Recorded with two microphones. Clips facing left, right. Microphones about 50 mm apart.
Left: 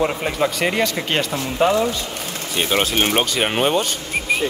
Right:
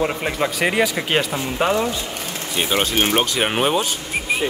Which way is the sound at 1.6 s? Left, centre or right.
Right.